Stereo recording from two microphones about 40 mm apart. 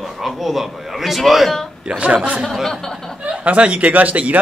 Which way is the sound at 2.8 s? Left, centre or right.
Centre.